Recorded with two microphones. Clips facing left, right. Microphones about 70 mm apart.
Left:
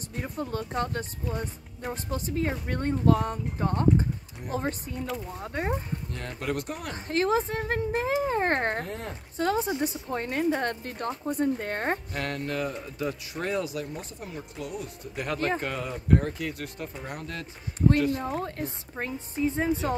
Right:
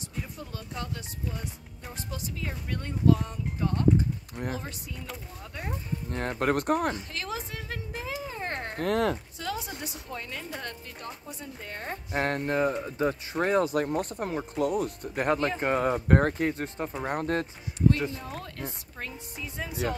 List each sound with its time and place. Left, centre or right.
0.2 s speech: left
6.0 s speech: right
7.0 s speech: left
8.8 s speech: right
9.4 s speech: left
12.1 s speech: right
15.2 s speech: right
15.8 s speech: right
16.4 s speech: right
17.0 s speech: right
18.1 s speech: left